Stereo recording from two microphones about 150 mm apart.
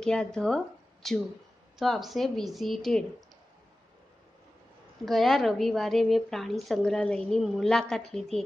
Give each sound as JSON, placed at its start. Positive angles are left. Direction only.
{"t": 0.0, "sound": "a woman's voice", "side_deg": 5}
{"t": 5.0, "sound": "a woman's voice", "side_deg": 0}